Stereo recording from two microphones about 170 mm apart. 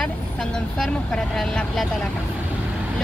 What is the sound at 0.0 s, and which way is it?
Speech, 5° left (ahead or behind).